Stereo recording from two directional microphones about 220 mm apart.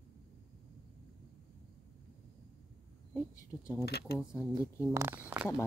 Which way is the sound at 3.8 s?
50° left (ahead or behind).